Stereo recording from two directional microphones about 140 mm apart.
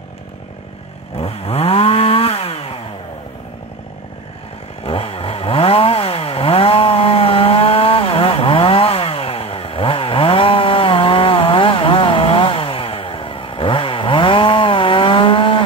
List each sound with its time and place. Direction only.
1.1 s chainsaw: 45° left (ahead or behind)
4.8 s chainsaw: 40° left (ahead or behind)